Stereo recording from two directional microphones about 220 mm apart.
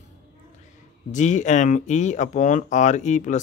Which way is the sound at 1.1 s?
35° left (ahead or behind).